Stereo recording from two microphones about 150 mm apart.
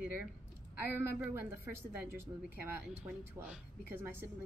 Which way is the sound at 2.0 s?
15° right (ahead or behind).